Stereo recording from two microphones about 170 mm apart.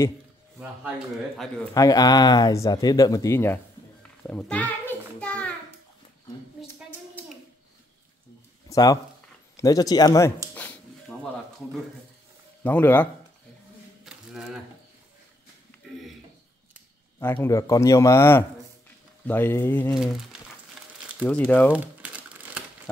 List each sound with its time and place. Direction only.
1.7 s speech: 20° left (ahead or behind)
4.2 s a sound: 5° left (ahead or behind)
8.6 s speech: 20° left (ahead or behind)
10.5 s a sound: 10° left (ahead or behind)
12.6 s a man's voice: 10° left (ahead or behind)
14.0 s a sound: 5° right (ahead or behind)
17.2 s a man's voice: 15° left (ahead or behind)
20.0 s speech: centre (ahead or behind)
21.3 s a man's voice: 10° left (ahead or behind)
21.7 s crumpling: 10° right (ahead or behind)